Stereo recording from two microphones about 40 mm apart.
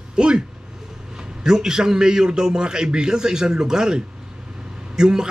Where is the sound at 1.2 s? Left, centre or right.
Centre.